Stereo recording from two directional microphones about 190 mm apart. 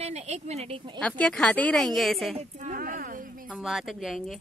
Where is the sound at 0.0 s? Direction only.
35° right (ahead or behind).